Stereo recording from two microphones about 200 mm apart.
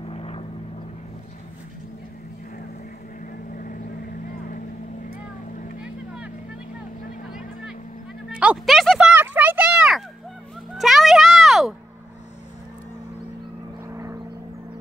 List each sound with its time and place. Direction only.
0.0 s vehicle: 30° left (ahead or behind)
3.5 s vehicle: 45° left (ahead or behind)
7.2 s vehicle: centre (ahead or behind)
8.3 s a sound: 5° right (ahead or behind)
13.8 s vehicle: 15° right (ahead or behind)